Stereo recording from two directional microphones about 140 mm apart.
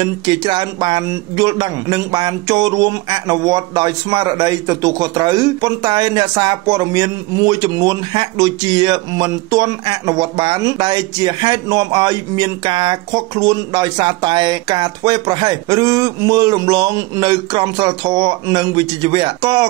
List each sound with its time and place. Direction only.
0.0 s a man's voice: 30° right (ahead or behind)